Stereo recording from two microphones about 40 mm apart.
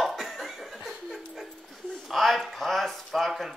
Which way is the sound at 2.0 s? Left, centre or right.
Centre.